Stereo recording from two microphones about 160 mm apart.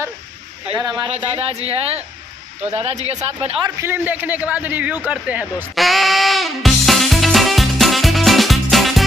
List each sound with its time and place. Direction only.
0.7 s speech: 30° right (ahead or behind)
1.2 s speech: 40° right (ahead or behind)
3.6 s a man's voice: 15° right (ahead or behind)
5.0 s music: 10° right (ahead or behind)